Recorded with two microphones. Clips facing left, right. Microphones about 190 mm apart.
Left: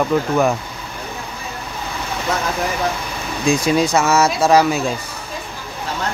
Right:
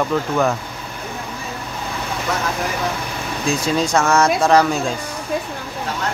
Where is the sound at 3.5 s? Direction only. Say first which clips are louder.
Left 4 dB; 10° left (ahead or behind).